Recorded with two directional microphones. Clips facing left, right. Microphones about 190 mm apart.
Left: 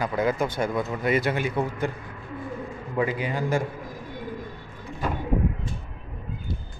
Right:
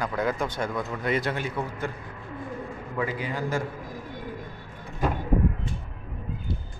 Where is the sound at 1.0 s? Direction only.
5° left (ahead or behind).